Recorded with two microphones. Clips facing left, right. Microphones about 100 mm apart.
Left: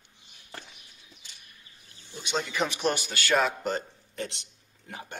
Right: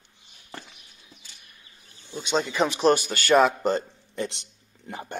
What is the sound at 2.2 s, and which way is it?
Speech, 30° right (ahead or behind).